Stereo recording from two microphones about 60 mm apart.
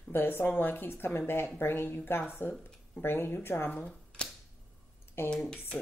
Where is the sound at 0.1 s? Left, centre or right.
Left.